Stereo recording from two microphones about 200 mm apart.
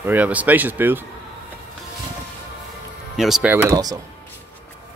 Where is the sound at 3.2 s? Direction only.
5° right (ahead or behind).